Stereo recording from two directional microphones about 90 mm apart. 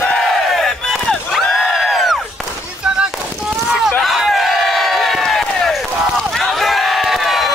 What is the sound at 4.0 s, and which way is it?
Crowd, centre (ahead or behind).